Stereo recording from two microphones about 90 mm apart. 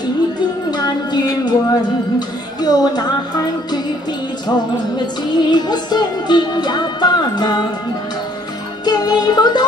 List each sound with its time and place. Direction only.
0.7 s music: 50° left (ahead or behind)
8.8 s music: 50° left (ahead or behind)